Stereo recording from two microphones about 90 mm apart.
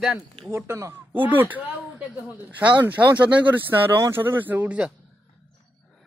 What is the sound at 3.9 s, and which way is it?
Speech, 35° right (ahead or behind).